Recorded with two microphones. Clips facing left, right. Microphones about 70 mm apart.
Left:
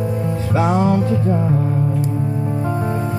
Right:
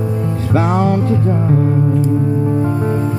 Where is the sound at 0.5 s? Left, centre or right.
Right.